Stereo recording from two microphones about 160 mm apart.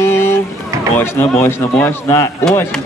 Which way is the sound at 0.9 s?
15° left (ahead or behind).